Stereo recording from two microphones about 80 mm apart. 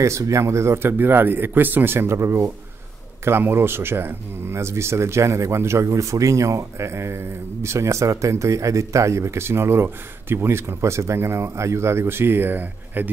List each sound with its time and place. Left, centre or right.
0.0 s speech: right